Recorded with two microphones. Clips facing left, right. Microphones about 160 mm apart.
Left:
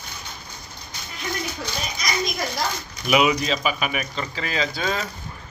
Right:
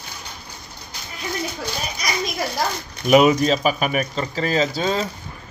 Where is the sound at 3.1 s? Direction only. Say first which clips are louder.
Right 6 dB; 45° right (ahead or behind).